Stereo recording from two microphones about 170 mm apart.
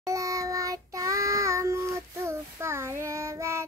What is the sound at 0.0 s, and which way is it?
Child singing, 20° right (ahead or behind).